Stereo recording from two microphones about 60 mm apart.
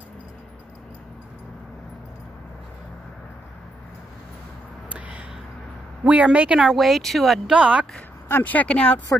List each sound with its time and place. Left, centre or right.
4.8 s a sound: right
6.0 s a woman's voice: right
6.6 s speech: centre
7.5 s a woman's voice: centre
8.5 s speech: left